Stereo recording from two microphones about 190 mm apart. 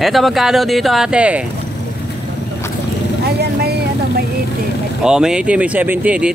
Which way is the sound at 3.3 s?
60° right (ahead or behind).